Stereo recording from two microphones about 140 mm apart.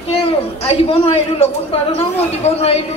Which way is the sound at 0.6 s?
45° left (ahead or behind).